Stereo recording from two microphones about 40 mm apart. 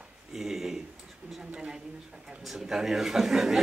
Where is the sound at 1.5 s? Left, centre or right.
Right.